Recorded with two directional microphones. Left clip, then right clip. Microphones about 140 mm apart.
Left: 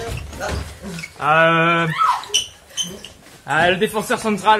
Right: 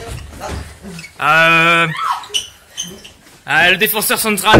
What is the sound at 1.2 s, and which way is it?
Speech, 25° right (ahead or behind).